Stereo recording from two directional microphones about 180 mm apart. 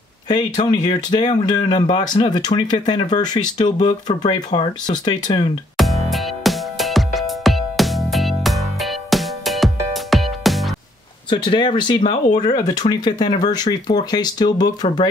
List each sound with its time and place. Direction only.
0.3 s speech: 25° left (ahead or behind)
3.7 s speech: 35° left (ahead or behind)
4.5 s speech: 25° left (ahead or behind)
5.8 s music: centre (ahead or behind)
11.2 s speech: 25° left (ahead or behind)